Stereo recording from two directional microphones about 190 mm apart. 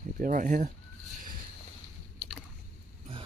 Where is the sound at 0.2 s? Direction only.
45° right (ahead or behind).